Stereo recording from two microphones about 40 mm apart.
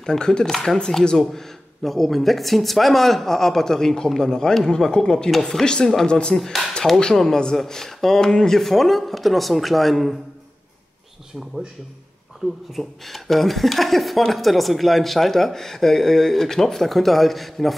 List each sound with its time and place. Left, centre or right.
0.0 s speech: centre
0.7 s speech: centre; by 6.3 s left
6.3 s speech: centre
7.2 s speech: centre
12.4 s speech: centre